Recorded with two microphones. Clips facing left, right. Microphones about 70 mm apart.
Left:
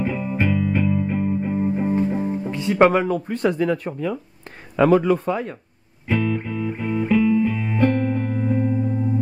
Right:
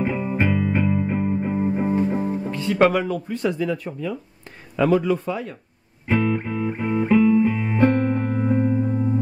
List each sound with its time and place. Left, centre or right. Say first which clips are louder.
0.0 s music: even; centre
2.5 s music: left 2 dB; centre
2.9 s speech: left 3 dB; left
3.3 s speech: left 3 dB; left
6.0 s music: right 1 dB; centre